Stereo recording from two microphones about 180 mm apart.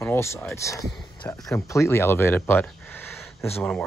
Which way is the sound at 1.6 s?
15° left (ahead or behind).